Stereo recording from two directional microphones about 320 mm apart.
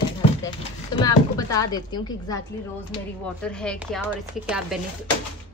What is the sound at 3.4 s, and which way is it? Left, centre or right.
A woman's voice, centre.